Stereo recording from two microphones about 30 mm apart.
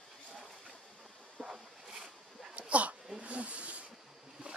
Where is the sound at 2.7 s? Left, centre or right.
Right.